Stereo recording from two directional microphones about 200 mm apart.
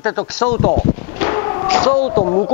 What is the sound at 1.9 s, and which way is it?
Speech, 40° left (ahead or behind).